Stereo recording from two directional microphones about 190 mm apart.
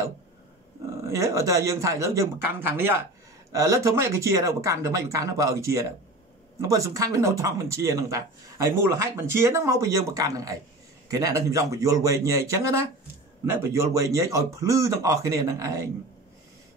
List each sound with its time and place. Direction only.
1.0 s speech: 15° right (ahead or behind)